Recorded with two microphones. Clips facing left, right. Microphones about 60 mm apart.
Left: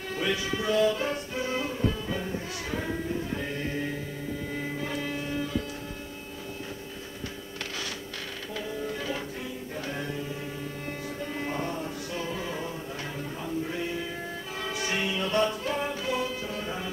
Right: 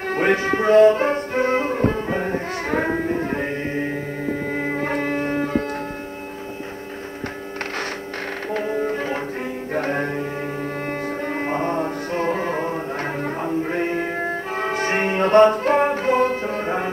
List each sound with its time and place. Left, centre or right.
0.1 s music: right
3.6 s music: right
8.5 s music: right
11.3 s music: right